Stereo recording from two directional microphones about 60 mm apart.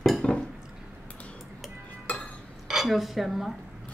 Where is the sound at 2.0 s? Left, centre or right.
Left.